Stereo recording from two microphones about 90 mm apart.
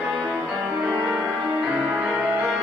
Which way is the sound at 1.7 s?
15° right (ahead or behind).